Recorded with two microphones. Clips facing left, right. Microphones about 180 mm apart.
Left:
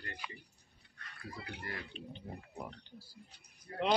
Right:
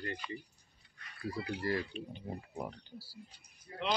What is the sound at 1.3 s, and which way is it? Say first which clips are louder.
Speech: right 10 dB; 35° right (ahead or behind).